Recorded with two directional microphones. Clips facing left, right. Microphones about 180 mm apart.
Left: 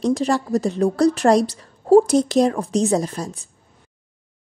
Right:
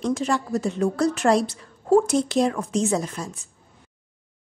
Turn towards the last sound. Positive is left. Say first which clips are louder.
# left 4 dB
turn(degrees=35)  # may be behind; listen again after turning